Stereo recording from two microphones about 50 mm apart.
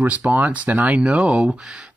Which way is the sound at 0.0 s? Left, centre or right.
Right.